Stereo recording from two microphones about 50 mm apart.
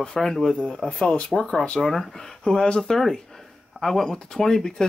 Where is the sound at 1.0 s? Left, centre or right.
Left.